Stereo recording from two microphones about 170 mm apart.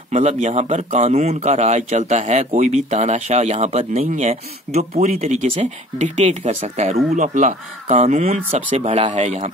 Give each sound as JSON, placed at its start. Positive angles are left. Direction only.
{"t": 0.1, "sound": "speech", "side_deg": -40}